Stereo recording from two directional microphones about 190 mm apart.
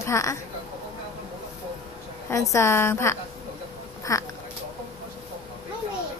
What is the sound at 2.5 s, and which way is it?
A woman's voice, 15° left (ahead or behind).